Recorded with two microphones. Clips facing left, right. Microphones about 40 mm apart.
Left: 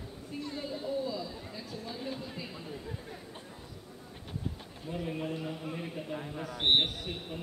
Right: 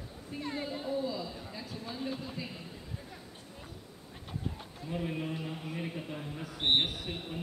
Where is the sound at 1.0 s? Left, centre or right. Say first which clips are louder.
Even; centre.